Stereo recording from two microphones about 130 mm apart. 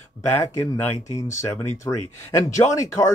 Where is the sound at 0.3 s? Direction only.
20° left (ahead or behind).